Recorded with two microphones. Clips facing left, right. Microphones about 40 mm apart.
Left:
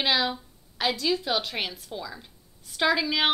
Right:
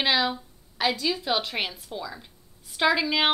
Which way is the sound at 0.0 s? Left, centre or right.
Centre.